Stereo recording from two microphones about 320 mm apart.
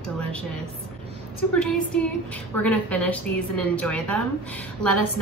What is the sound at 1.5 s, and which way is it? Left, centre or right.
A woman's voice, centre.